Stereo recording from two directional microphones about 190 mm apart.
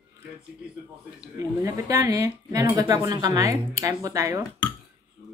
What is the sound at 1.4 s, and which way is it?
Speech, 15° right (ahead or behind).